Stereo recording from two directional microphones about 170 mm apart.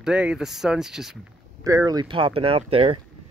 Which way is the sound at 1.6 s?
20° right (ahead or behind).